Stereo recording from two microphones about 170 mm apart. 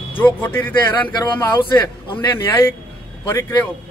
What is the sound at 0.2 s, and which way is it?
Speech, 10° left (ahead or behind).